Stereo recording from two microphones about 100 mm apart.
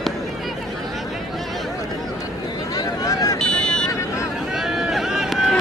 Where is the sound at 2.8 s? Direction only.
40° left (ahead or behind).